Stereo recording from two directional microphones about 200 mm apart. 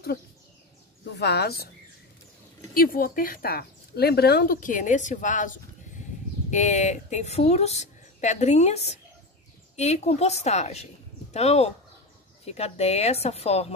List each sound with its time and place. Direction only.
1.1 s speech: 55° left (ahead or behind)
2.7 s speech: 45° left (ahead or behind); by 13.7 s 30° left (ahead or behind)